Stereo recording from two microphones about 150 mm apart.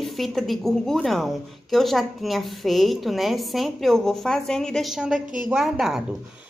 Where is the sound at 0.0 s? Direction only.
Centre (ahead or behind).